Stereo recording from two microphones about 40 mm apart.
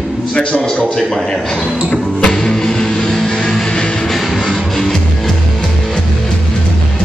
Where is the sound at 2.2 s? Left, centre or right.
Centre.